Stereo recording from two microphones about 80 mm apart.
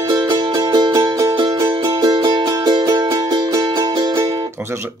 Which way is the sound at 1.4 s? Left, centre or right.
Right.